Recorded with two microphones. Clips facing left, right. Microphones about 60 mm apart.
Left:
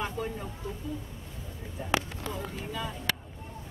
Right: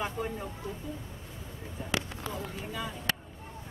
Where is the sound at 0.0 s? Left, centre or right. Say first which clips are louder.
Even; centre.